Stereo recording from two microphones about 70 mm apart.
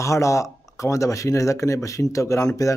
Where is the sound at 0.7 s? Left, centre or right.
Left.